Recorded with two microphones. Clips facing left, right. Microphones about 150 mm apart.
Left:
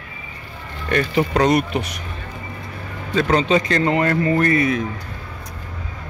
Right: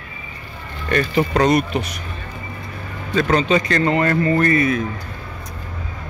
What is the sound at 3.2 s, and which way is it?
Speech, 20° left (ahead or behind).